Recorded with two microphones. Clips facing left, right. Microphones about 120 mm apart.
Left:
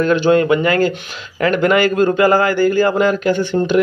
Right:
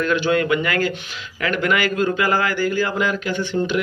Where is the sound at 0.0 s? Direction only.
35° left (ahead or behind).